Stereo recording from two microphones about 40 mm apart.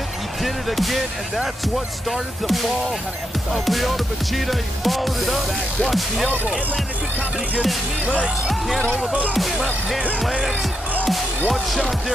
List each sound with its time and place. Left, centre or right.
0.4 s music: centre
8.5 s music: centre
9.0 s music: right
11.1 s music: centre